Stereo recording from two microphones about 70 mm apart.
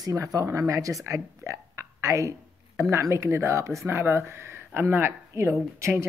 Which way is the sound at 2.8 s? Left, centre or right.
Right.